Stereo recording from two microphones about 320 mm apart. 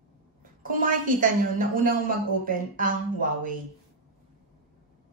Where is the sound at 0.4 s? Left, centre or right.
Right.